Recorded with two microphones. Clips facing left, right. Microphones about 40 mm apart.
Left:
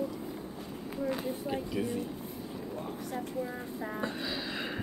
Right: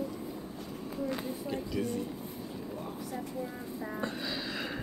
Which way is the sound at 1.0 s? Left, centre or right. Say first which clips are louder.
Left 3 dB; centre.